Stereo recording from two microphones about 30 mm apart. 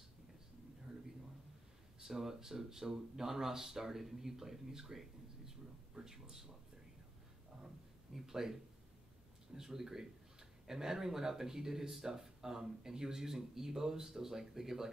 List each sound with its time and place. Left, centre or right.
2.0 s speech: centre
8.1 s a sound: centre
9.5 s speech: centre